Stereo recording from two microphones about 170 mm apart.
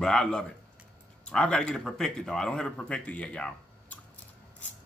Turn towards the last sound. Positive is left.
turn(degrees=5)  # may be behind; listen again after turning